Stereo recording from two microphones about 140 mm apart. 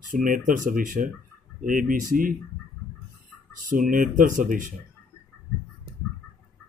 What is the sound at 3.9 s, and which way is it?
Speech, 75° right (ahead or behind).